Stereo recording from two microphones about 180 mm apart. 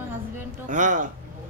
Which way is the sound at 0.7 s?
45° right (ahead or behind).